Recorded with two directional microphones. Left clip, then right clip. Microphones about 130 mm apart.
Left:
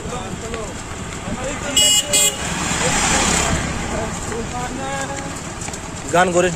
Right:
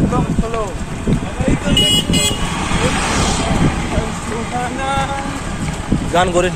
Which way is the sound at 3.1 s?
80° left.